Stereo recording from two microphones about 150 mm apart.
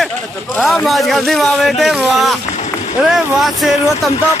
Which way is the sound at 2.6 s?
50° left (ahead or behind).